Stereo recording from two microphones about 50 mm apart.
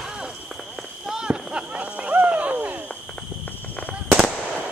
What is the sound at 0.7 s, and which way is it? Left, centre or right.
Clip-clop, centre.